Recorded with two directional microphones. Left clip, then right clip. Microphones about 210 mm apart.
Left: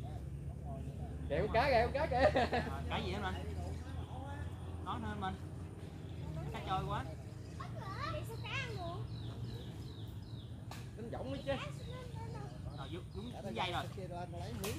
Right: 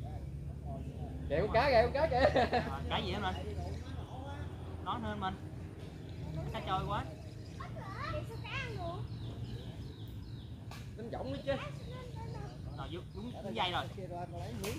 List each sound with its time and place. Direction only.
1.3 s speech: 10° right (ahead or behind)
2.7 s speech: 25° right (ahead or behind)
4.8 s speech: 25° right (ahead or behind)
6.5 s speech: 25° right (ahead or behind)
8.0 s children playing: 50° left (ahead or behind)
11.1 s speech: 10° right (ahead or behind)
13.6 s speech: 25° right (ahead or behind)